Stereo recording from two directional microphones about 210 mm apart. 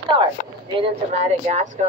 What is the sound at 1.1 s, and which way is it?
Speech, 30° right (ahead or behind).